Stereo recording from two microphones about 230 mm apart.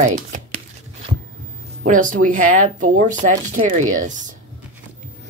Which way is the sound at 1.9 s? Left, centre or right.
Right.